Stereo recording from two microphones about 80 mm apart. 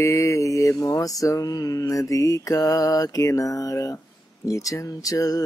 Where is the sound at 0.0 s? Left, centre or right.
Left.